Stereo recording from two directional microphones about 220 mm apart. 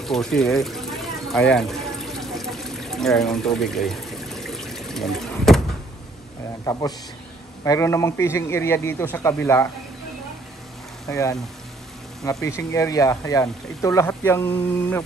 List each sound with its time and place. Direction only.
0.0 s a sound: centre (ahead or behind)
1.5 s water: centre (ahead or behind)
6.6 s speech: 15° left (ahead or behind)
11.1 s speech: 15° left (ahead or behind)